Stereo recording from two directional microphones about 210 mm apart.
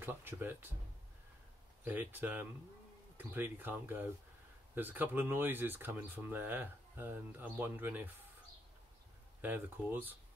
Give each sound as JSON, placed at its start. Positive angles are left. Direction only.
{"t": 0.0, "sound": "speech", "side_deg": -10}
{"t": 1.9, "sound": "speech", "side_deg": -10}
{"t": 9.4, "sound": "speech", "side_deg": -10}